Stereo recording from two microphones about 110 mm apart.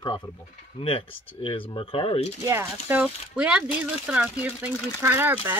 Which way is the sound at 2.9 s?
10° right (ahead or behind).